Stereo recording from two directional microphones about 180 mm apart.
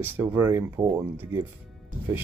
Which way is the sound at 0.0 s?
15° right (ahead or behind).